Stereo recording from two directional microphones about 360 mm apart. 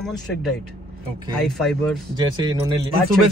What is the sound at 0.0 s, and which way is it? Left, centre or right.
Speech, centre.